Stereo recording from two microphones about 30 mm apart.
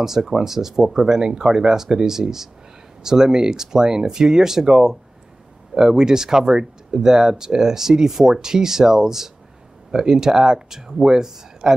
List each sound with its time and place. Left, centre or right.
0.0 s speech: centre